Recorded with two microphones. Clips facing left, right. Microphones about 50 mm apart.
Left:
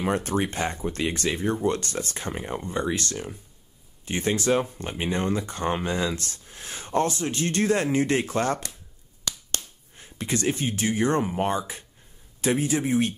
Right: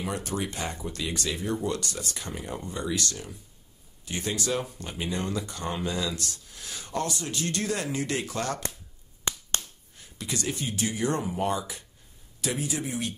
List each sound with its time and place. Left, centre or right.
0.0 s speech: left
9.3 s a sound: right
9.9 s speech: left